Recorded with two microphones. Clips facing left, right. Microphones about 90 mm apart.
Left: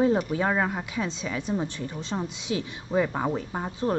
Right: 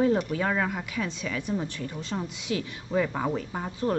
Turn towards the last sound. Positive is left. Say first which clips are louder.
# left 1 dB
turn(degrees=20)  # may be behind; listen again after turning